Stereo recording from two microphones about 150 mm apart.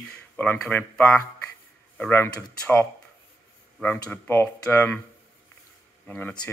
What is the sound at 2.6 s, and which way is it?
Speech, 10° left (ahead or behind).